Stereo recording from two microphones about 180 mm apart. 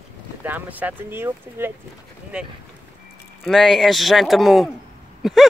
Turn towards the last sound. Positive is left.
turn(degrees=0)  # may be behind; listen again after turning